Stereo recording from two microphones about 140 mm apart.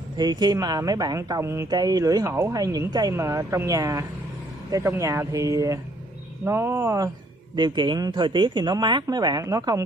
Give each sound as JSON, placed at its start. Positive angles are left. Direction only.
{"t": 0.2, "sound": "a woman's voice", "side_deg": -30}
{"t": 7.5, "sound": "speech", "side_deg": -35}